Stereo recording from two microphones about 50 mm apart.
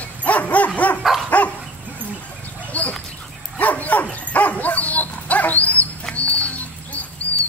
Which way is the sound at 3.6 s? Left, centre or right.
Left.